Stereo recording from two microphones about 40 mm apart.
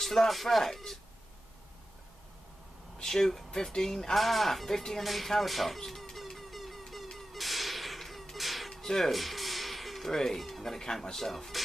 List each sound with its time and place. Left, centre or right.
0.0 s speech: centre
3.0 s speech: centre
6.3 s a sound: centre
7.2 s cat: centre
9.1 s speech: centre